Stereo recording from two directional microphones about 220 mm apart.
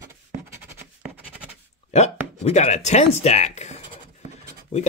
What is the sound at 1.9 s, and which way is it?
Speech, 30° left (ahead or behind).